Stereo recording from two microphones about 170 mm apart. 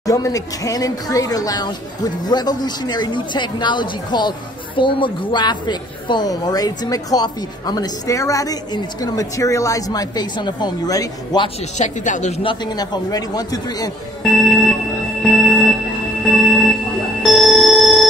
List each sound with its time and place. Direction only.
0.0 s speech: 20° left (ahead or behind)
11.8 s speech: 45° left (ahead or behind)
12.4 s speech: 25° left (ahead or behind)
14.2 s a sound: centre (ahead or behind)
15.2 s music: centre (ahead or behind)
16.3 s train wheels squealing: centre (ahead or behind)
17.2 s a sound: centre (ahead or behind)